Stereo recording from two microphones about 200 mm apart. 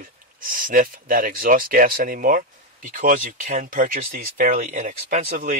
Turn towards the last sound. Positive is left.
turn(degrees=-40)  # may be behind; listen again after turning